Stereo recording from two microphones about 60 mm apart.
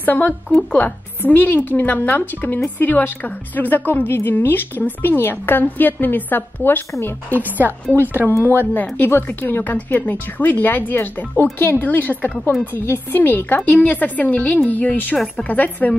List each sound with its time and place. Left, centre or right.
0.0 s a woman's voice: left